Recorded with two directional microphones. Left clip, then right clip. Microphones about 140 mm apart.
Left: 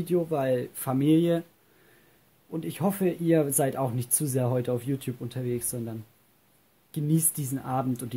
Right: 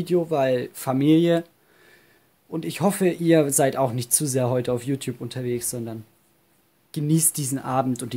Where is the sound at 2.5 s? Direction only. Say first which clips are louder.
Right 6 dB; 25° right (ahead or behind).